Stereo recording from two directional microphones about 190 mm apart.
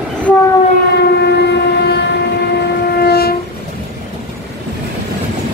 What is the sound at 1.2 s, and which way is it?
Train, 60° left (ahead or behind).